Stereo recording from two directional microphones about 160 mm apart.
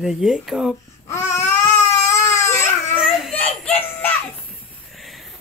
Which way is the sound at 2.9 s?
Centre (ahead or behind).